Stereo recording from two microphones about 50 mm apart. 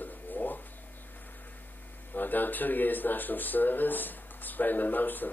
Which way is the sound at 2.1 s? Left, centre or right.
Left.